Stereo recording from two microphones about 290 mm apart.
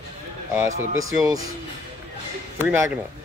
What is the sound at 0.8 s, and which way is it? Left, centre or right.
Speech, right.